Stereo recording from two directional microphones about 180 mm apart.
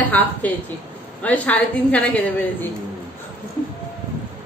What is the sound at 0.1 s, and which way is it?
A woman's voice, 10° left (ahead or behind).